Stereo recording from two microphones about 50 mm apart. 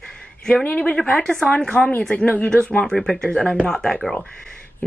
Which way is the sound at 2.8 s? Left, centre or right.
Centre.